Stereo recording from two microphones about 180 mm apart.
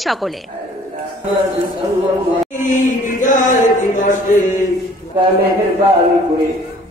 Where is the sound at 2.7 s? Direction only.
45° left (ahead or behind).